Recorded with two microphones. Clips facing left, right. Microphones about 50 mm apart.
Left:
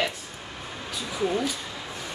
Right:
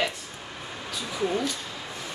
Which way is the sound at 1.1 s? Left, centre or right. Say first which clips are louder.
Left 1 dB; centre.